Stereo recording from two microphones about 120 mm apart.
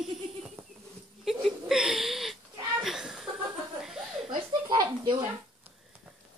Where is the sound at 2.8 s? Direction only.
5° right (ahead or behind).